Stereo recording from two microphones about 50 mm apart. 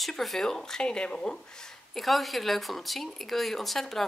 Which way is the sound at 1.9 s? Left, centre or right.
Centre.